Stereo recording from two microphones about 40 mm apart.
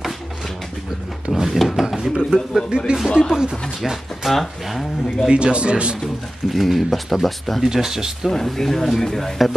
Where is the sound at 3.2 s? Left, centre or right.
Centre.